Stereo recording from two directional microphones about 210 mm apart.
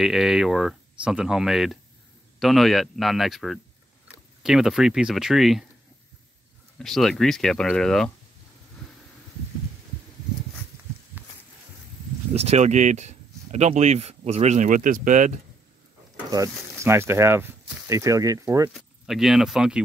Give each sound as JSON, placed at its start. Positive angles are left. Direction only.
{"t": 0.0, "sound": "speech", "side_deg": 0}
{"t": 6.8, "sound": "speech", "side_deg": 0}
{"t": 12.4, "sound": "speech", "side_deg": -30}
{"t": 16.3, "sound": "speech", "side_deg": -15}
{"t": 18.7, "sound": "speech", "side_deg": 0}